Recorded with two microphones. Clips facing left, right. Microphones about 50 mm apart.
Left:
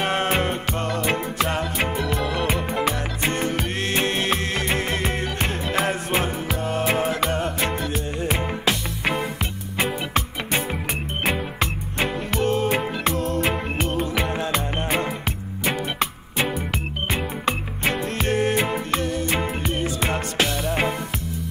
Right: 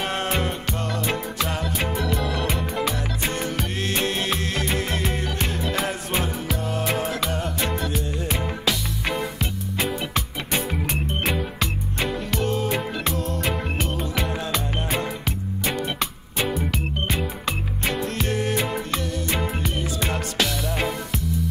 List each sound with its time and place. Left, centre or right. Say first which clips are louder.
0.0 s music: left 3 dB; left
2.1 s music: left 2 dB; centre